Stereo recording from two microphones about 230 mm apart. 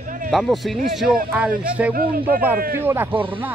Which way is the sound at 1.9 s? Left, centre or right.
Right.